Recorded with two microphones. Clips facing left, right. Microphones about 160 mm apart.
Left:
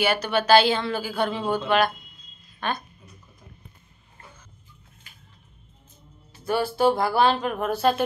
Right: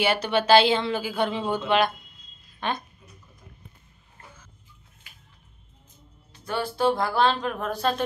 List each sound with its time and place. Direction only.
0.0 s a woman's voice: 25° right (ahead or behind)
2.6 s a woman's voice: 20° right (ahead or behind)
6.3 s speech: 5° left (ahead or behind)